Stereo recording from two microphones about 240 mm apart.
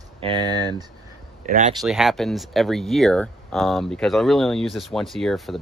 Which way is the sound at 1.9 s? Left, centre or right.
Centre.